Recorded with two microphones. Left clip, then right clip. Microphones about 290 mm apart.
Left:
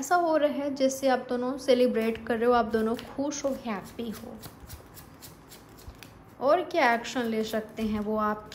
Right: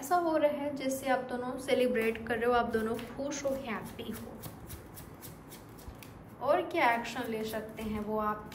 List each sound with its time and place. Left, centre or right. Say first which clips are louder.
0.0 s a woman's voice: left 4 dB; left
6.4 s a woman's voice: left 5 dB; left